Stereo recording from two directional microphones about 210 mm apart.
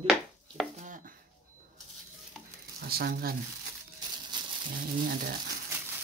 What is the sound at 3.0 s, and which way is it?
Speech, 45° right (ahead or behind).